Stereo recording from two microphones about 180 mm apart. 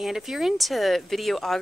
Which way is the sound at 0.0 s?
Centre (ahead or behind).